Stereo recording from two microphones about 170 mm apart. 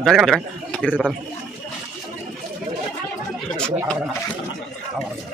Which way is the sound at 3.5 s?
5° left (ahead or behind).